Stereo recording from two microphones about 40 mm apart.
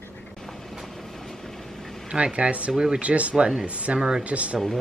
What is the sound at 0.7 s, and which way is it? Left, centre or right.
Vehicle, centre.